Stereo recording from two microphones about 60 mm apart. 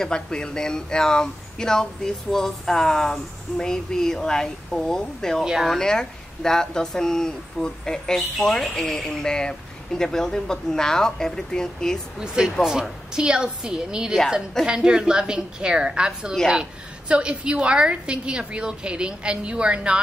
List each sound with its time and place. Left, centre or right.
0.0 s speech: centre
5.4 s a woman's voice: centre
5.7 s speech: centre
12.4 s a woman's voice: centre